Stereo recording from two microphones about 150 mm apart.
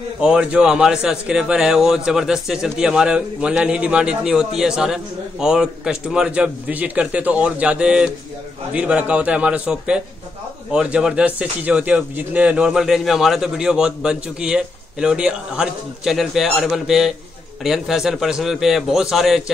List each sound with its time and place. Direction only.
0.2 s a man's voice: 5° right (ahead or behind)